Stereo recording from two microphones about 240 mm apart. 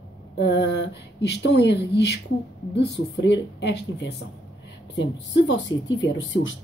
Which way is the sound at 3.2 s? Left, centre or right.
Left.